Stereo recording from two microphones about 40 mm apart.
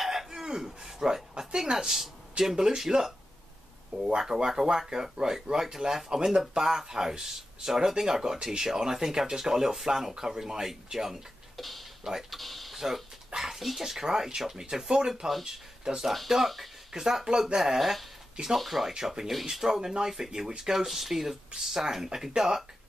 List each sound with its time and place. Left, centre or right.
0.0 s cough: centre
0.9 s a sound: centre
1.6 s speech: centre
11.5 s speech: centre
12.0 s speech: centre
12.3 s speech: centre
17.6 s speech: centre
18.6 s speech: centre